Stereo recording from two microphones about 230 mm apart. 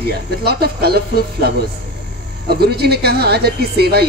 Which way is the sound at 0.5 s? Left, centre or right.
Right.